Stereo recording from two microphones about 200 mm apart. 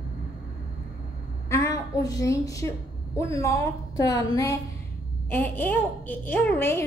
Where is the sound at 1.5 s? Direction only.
15° left (ahead or behind).